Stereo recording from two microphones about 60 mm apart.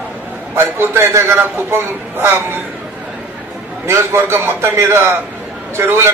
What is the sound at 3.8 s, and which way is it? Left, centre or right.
A man's voice, right.